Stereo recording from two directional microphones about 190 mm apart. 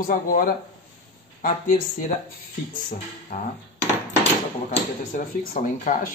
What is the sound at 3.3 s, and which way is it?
Speech, 50° left (ahead or behind).